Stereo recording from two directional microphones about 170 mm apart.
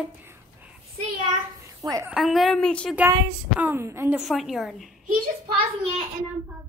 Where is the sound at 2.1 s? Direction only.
Centre (ahead or behind).